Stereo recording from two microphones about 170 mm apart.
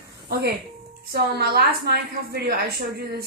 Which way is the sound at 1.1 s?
65° right (ahead or behind).